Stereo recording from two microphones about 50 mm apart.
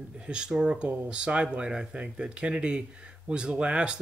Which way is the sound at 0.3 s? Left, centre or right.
Centre.